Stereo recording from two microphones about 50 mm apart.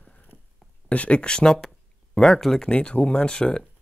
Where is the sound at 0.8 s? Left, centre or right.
Left; by 2.7 s centre.